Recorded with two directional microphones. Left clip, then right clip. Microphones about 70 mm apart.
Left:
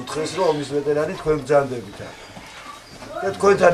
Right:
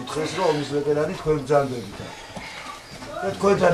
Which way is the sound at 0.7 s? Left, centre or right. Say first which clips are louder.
Left 1 dB; left.